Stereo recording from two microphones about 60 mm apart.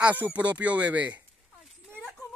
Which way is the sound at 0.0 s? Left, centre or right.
Right.